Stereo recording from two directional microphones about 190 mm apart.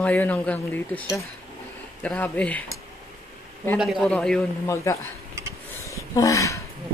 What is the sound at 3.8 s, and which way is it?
Speech, centre (ahead or behind).